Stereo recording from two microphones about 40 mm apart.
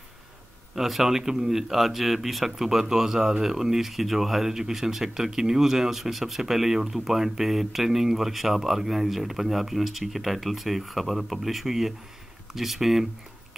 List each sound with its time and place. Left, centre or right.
0.7 s speech: centre